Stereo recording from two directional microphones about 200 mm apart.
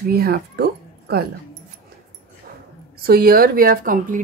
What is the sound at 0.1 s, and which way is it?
Speech, 50° right (ahead or behind).